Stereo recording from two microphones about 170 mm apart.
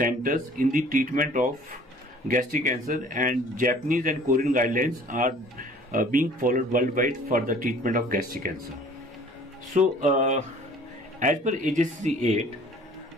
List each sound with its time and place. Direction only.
0.0 s speech: 55° right (ahead or behind)
9.8 s speech: 45° right (ahead or behind)